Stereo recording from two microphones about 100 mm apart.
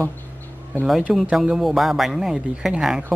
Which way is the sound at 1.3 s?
5° right (ahead or behind).